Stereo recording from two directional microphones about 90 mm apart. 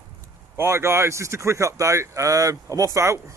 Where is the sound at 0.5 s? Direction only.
30° right (ahead or behind).